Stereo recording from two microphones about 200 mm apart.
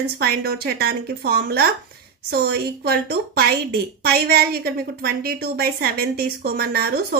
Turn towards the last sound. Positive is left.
turn(degrees=-50)  # may be behind; listen again after turning